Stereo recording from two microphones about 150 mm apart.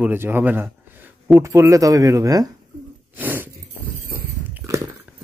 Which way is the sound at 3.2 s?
10° right (ahead or behind).